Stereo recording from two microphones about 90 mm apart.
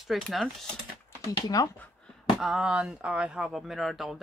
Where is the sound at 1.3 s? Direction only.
40° left (ahead or behind).